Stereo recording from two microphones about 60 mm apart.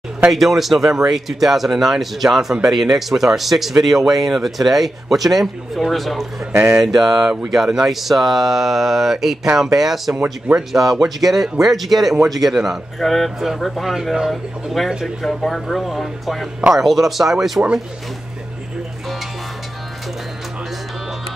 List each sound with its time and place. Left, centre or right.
0.3 s speech: centre
6.5 s speech: right
6.8 s speech: centre